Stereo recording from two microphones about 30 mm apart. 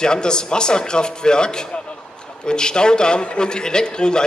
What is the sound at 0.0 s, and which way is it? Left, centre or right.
A man's voice, left.